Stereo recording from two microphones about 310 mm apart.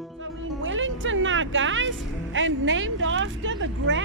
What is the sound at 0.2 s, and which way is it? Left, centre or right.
Speech, right.